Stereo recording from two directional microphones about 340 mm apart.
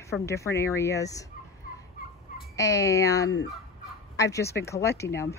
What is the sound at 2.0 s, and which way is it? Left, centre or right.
Fowl, left.